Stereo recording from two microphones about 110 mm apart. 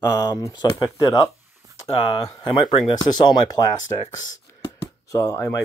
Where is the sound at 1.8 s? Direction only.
50° left (ahead or behind).